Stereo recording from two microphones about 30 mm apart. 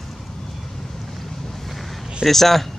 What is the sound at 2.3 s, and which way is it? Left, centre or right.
Speech, centre.